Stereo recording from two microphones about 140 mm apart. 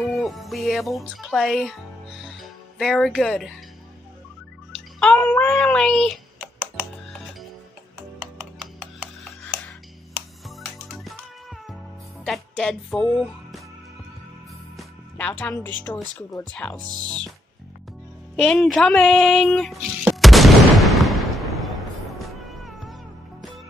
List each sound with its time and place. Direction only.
0.0 s speech: centre (ahead or behind)
2.2 s music: centre (ahead or behind)
5.0 s a sound: 10° left (ahead or behind)
10.9 s music: centre (ahead or behind)
12.3 s music: 5° left (ahead or behind)
15.1 s speech: 10° left (ahead or behind)
16.8 s speech: 30° right (ahead or behind)
18.3 s speech: 5° left (ahead or behind)
20.2 s artillery fire: centre (ahead or behind)
22.2 s cat: centre (ahead or behind)